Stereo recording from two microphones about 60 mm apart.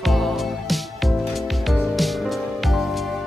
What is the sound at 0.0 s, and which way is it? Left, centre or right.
Music, centre.